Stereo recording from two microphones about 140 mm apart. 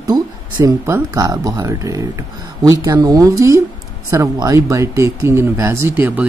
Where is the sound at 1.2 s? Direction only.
30° right (ahead or behind).